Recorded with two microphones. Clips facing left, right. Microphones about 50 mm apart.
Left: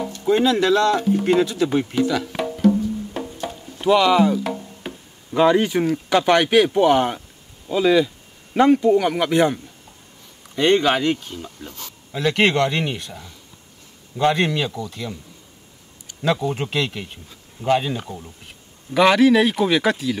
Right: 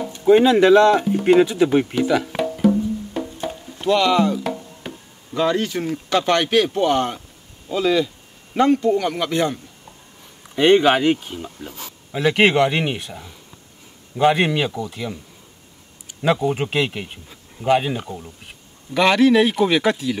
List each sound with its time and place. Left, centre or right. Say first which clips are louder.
0.1 s speech: right 5 dB; centre
3.1 s music: right 2 dB; centre
5.3 s speech: left 4 dB; centre
10.5 s speech: right 3 dB; centre